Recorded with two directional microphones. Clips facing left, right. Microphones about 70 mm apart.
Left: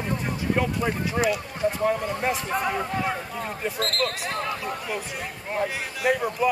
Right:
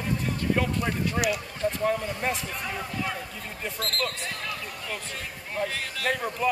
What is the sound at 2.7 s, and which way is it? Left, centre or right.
Speech, left.